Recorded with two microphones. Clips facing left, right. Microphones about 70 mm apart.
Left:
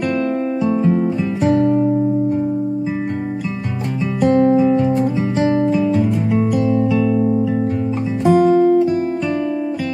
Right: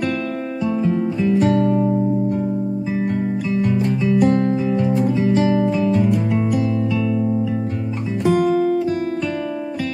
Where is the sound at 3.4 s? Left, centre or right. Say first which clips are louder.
Right 5 dB; centre.